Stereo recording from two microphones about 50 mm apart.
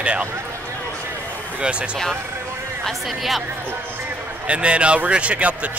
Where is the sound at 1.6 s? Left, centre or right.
Centre.